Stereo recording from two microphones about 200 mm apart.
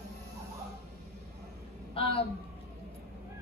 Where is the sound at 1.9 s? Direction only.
25° left (ahead or behind).